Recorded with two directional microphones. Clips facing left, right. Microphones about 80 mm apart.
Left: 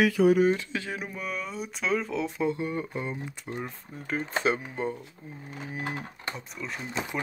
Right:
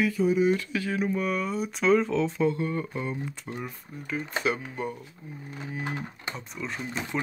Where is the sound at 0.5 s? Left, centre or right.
Left.